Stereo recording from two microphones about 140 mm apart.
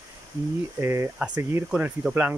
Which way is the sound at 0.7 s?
15° right (ahead or behind).